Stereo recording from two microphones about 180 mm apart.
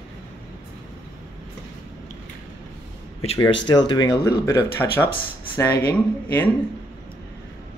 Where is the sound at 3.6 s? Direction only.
25° left (ahead or behind); by 6.5 s 10° left (ahead or behind).